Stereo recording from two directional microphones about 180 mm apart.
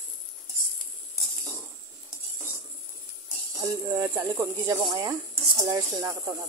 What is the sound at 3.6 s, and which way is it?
Speech, 20° right (ahead or behind).